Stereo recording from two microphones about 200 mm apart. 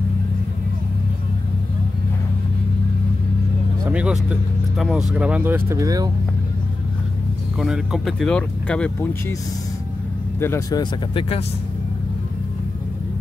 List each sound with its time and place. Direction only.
3.9 s speech: 5° right (ahead or behind)
7.5 s speech: 5° right (ahead or behind)
10.4 s speech: 15° left (ahead or behind)